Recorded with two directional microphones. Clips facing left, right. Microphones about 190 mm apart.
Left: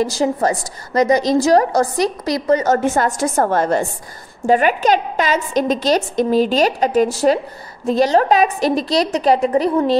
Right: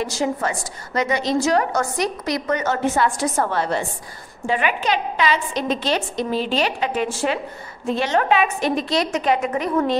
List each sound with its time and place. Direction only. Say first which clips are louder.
0.0 s a woman's voice: left 6 dB; 35° left (ahead or behind)